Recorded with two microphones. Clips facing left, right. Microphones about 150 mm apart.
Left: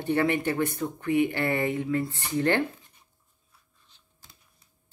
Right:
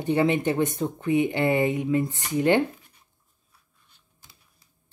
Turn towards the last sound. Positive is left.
turn(degrees=-10)  # may be behind; listen again after turning